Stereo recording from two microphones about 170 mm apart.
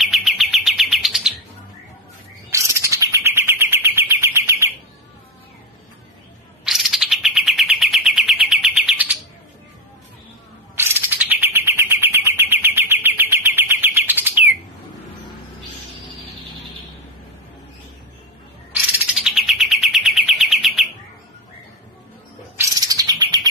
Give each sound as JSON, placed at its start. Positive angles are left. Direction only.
{"t": 0.1, "sound": "bird", "side_deg": 0}
{"t": 2.5, "sound": "bird", "side_deg": -15}
{"t": 6.6, "sound": "bird", "side_deg": 0}
{"t": 10.8, "sound": "bird", "side_deg": -10}
{"t": 18.7, "sound": "bird", "side_deg": -5}
{"t": 22.6, "sound": "bird", "side_deg": -20}